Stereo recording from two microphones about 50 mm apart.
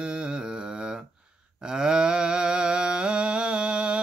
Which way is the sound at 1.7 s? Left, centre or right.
Centre.